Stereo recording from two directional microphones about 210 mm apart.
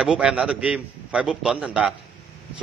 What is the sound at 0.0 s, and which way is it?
A man's voice, 5° right (ahead or behind).